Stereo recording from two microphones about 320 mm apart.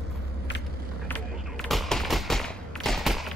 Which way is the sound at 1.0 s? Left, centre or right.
Centre.